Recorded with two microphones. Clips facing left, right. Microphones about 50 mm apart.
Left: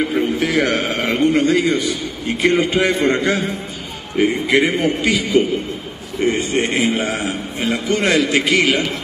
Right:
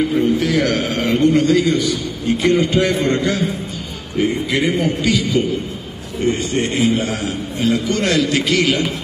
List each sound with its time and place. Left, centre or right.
0.1 s a man's voice: left